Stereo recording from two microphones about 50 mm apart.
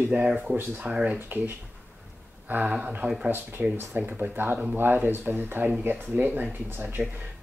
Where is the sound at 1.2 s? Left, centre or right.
Right.